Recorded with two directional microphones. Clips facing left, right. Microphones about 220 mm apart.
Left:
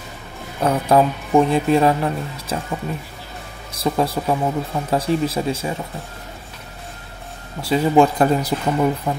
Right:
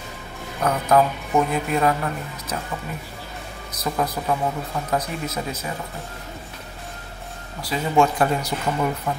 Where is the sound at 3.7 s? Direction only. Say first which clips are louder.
Left 5 dB; 30° left (ahead or behind).